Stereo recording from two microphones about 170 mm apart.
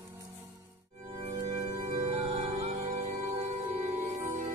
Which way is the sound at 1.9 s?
35° right (ahead or behind).